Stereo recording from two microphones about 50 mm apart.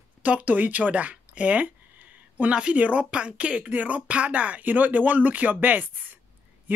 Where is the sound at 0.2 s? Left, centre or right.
Right.